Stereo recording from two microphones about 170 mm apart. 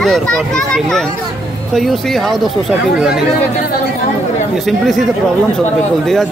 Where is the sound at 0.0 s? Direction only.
5° left (ahead or behind).